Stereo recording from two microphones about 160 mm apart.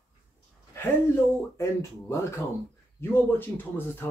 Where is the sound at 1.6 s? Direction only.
15° left (ahead or behind).